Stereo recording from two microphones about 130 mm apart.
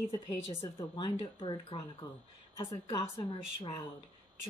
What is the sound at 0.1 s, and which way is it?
Speech, 35° left (ahead or behind).